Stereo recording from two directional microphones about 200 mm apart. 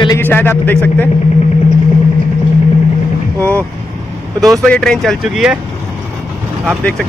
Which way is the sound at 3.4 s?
10° left (ahead or behind).